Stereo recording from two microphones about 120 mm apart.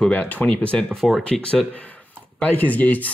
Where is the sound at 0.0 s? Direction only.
15° left (ahead or behind).